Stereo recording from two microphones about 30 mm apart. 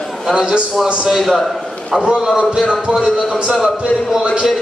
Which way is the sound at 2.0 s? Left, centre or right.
Right.